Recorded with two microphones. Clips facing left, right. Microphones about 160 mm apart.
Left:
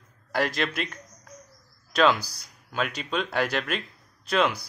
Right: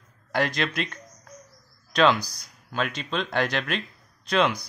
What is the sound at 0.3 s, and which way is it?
Speech, 5° left (ahead or behind).